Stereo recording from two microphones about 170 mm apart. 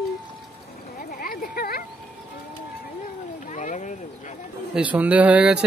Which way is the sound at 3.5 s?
45° left (ahead or behind).